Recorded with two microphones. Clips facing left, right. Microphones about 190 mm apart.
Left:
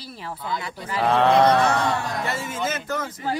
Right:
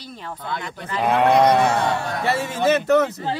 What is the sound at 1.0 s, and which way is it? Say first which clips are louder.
Speech: right 1 dB; 15° right (ahead or behind).